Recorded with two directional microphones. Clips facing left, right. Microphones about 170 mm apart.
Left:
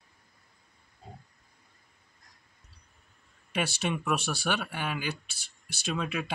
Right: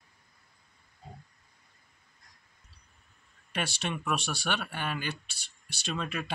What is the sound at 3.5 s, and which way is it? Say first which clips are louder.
Speech: left 3 dB; 5° left (ahead or behind).